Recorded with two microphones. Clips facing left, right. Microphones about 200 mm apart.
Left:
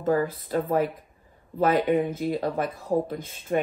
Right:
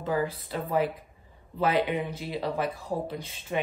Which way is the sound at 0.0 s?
50° left (ahead or behind).